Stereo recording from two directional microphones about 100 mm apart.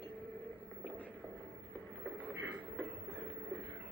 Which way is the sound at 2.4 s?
5° left (ahead or behind).